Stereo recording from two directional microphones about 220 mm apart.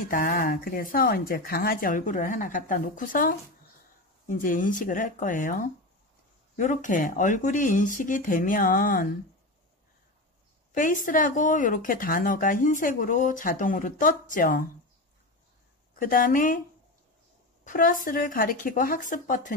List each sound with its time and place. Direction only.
0.1 s speech: 40° left (ahead or behind)
10.7 s speech: 35° left (ahead or behind)
16.0 s speech: 40° left (ahead or behind)
17.6 s speech: 40° left (ahead or behind)